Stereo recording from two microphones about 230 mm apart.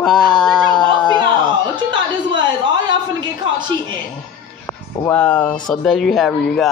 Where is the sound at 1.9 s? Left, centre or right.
Centre.